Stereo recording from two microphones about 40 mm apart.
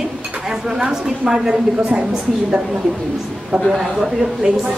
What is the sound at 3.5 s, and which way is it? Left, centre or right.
Speech, right.